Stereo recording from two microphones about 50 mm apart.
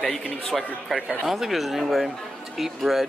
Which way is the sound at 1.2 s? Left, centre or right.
Centre.